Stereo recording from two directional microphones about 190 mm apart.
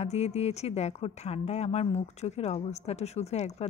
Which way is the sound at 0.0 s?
35° left (ahead or behind).